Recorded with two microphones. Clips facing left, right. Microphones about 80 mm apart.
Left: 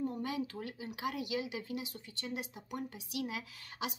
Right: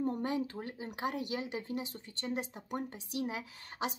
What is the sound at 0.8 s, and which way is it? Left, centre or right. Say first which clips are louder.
Speech: right 2 dB; right.